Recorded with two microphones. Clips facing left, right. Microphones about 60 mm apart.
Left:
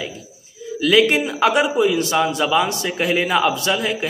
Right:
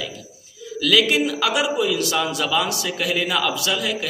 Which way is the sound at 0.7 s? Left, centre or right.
Left.